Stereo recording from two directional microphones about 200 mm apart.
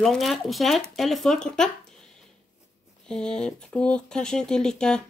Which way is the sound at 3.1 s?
5° left (ahead or behind).